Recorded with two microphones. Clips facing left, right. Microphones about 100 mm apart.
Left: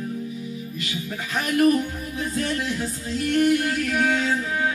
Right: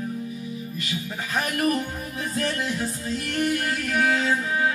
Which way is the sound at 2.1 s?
35° right (ahead or behind).